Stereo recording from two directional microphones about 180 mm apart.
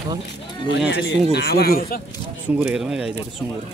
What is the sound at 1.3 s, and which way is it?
Speech, 60° left (ahead or behind).